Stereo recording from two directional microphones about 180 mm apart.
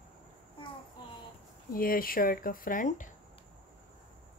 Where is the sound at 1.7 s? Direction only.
55° left (ahead or behind).